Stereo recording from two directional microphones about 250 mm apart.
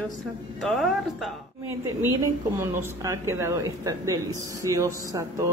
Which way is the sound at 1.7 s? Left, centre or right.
Centre.